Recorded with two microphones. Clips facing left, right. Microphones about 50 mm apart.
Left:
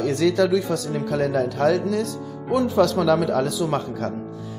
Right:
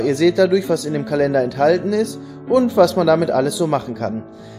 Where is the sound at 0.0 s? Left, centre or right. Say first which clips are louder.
Right 5 dB; right.